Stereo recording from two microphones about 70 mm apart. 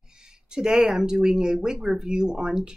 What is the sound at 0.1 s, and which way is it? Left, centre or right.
A woman's voice, centre.